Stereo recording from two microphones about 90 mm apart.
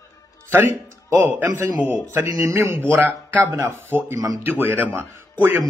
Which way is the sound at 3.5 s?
35° right (ahead or behind).